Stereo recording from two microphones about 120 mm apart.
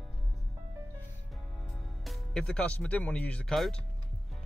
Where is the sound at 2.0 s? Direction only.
5° left (ahead or behind).